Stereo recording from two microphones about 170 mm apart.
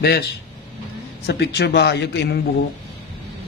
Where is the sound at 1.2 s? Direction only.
75° left (ahead or behind).